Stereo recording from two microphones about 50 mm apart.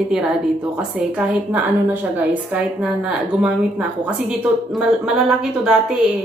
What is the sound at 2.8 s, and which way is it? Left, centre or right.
A woman's voice, right.